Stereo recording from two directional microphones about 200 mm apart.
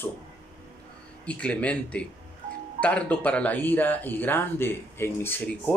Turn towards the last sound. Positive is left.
turn(degrees=5)  # may be behind; listen again after turning